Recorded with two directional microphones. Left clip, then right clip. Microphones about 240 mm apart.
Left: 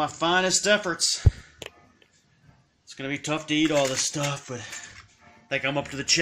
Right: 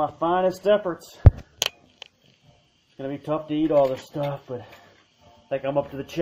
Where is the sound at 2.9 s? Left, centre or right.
Left.